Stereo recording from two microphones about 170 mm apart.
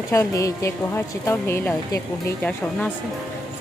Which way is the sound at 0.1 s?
20° left (ahead or behind).